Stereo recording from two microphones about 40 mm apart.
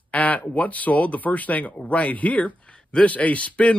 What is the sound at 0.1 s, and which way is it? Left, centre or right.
Speech, left.